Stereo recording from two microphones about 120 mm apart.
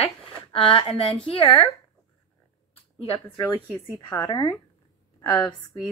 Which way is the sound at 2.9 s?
55° left (ahead or behind).